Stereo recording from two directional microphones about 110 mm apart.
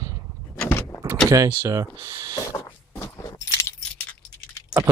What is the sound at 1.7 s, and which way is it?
Speech, 35° right (ahead or behind).